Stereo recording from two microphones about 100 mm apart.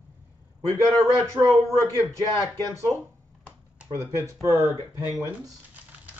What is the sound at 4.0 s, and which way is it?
Speech, 30° right (ahead or behind).